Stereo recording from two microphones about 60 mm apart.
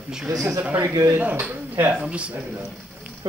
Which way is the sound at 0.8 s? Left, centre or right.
Right.